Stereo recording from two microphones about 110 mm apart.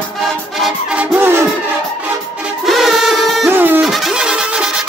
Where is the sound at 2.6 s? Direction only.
Centre (ahead or behind).